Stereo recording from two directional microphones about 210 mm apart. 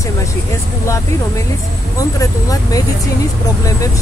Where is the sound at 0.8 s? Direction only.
15° left (ahead or behind).